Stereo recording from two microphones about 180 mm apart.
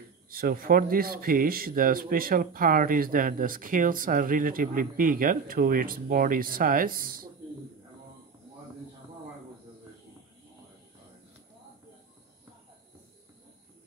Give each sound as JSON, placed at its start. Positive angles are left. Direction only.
{"t": 0.3, "sound": "speech", "side_deg": -55}